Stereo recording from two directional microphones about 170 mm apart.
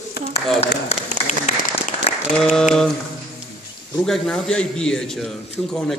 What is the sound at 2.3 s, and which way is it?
Speech, 5° left (ahead or behind).